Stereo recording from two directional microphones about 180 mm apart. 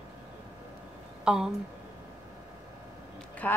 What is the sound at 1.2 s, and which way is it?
Speech, 5° right (ahead or behind).